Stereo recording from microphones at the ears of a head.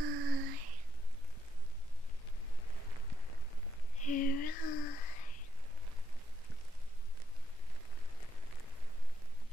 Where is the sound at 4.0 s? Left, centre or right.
Left.